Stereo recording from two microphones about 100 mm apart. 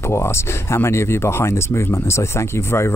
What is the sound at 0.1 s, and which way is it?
Speech, 25° left (ahead or behind).